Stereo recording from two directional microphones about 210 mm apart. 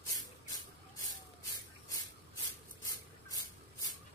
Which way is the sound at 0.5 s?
15° left (ahead or behind).